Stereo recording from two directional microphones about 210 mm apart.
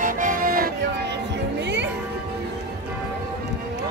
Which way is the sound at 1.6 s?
55° right (ahead or behind).